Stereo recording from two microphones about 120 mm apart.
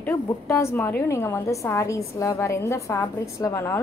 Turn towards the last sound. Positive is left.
turn(degrees=25)  # may be behind; listen again after turning